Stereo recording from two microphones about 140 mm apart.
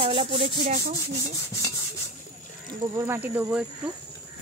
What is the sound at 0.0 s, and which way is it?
Rub, 40° right (ahead or behind).